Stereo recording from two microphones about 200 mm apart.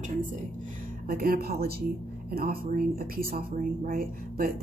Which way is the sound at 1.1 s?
45° right (ahead or behind).